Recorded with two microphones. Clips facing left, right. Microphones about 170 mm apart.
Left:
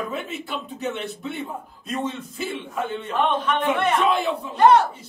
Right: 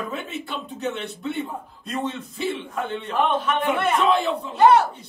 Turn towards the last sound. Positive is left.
turn(degrees=-5)  # may be behind; listen again after turning